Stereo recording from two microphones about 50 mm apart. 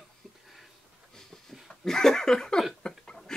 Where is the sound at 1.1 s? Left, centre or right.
Centre.